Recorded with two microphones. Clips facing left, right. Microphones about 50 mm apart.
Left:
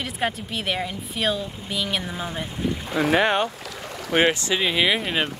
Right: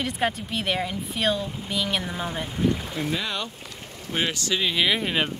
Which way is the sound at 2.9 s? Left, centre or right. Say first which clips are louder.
Left 8 dB; left.